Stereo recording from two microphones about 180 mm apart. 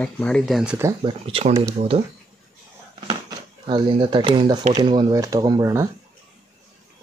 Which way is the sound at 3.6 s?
25° right (ahead or behind).